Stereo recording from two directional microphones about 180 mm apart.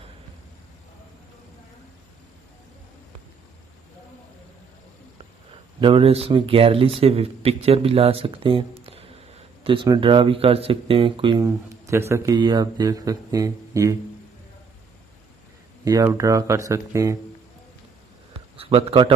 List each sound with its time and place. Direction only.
5.8 s speech: 30° right (ahead or behind)
15.8 s speech: 20° right (ahead or behind)
18.6 s speech: 30° right (ahead or behind)